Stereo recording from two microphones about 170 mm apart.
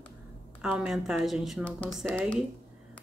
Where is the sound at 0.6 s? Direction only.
5° right (ahead or behind).